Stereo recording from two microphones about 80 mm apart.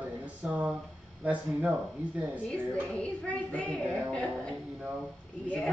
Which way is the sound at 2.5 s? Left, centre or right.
Centre.